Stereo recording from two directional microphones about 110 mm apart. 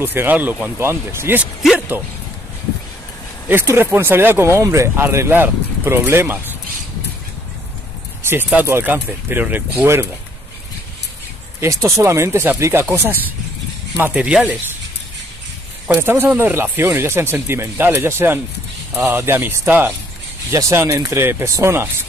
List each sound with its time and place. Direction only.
0.0 s speech: 20° right (ahead or behind)
3.4 s speech: 20° right (ahead or behind)
8.3 s speech: 15° right (ahead or behind)
11.6 s speech: 30° right (ahead or behind); by 14.5 s 10° right (ahead or behind)
16.0 s speech: 20° right (ahead or behind)